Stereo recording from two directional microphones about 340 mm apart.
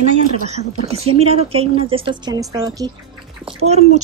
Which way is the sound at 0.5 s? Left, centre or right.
Centre.